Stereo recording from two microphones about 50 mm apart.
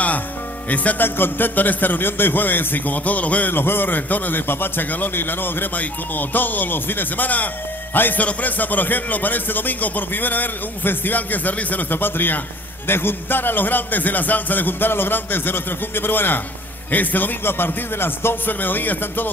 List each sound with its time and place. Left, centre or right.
0.7 s speech: left
3.5 s a man's voice: left